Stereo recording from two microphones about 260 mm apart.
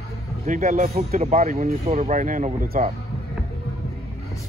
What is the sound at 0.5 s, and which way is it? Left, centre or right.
Speech, right.